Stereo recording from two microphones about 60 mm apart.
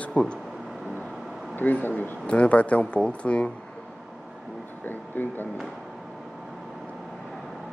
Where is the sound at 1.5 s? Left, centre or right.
Left.